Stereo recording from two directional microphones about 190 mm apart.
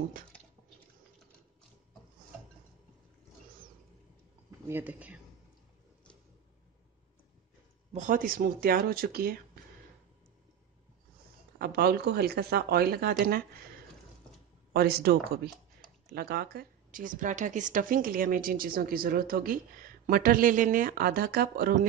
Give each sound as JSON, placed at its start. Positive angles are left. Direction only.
{"t": 4.6, "sound": "speech", "side_deg": -10}
{"t": 7.9, "sound": "speech", "side_deg": -45}
{"t": 11.5, "sound": "speech", "side_deg": -55}
{"t": 14.7, "sound": "speech", "side_deg": -55}